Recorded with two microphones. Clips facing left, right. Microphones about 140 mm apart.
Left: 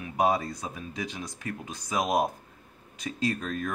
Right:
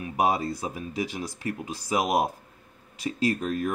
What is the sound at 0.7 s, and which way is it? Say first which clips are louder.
Speech: right 5 dB; 30° right (ahead or behind).